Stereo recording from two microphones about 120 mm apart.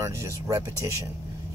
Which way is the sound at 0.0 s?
25° right (ahead or behind).